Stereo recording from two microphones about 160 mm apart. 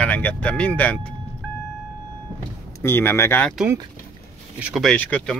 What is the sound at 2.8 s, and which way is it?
Speech, 15° left (ahead or behind).